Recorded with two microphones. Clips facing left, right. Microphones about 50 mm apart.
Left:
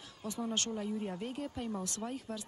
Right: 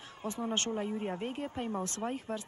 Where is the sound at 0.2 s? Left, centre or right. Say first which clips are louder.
Right 2 dB; right.